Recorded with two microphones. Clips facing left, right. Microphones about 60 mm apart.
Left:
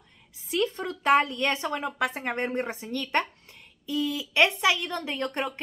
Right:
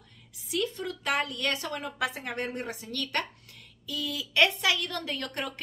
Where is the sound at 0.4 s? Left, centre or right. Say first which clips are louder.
Left 4 dB; left.